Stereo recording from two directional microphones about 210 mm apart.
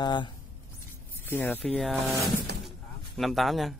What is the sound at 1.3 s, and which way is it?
Speech, 10° left (ahead or behind).